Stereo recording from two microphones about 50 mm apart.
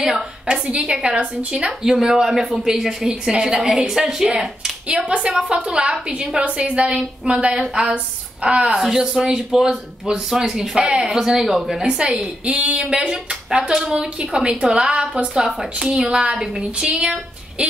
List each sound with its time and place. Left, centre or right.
0.0 s speech: centre
0.5 s a woman's voice: centre
1.7 s speech: centre
4.8 s a woman's voice: centre
8.8 s speech: centre
11.8 s a woman's voice: centre